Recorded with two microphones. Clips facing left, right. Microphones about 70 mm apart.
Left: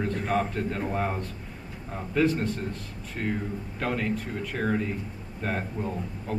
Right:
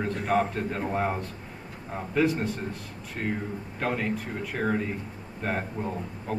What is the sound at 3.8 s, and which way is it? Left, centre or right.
A man's voice, centre.